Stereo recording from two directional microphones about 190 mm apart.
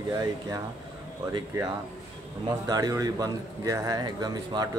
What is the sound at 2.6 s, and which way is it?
A man's voice, 20° right (ahead or behind).